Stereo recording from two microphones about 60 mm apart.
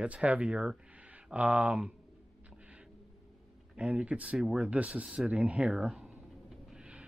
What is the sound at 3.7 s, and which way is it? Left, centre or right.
Speech, centre.